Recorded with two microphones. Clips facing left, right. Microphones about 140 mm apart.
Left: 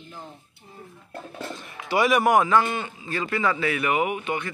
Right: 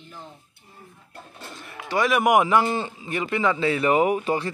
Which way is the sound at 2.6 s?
30° right (ahead or behind).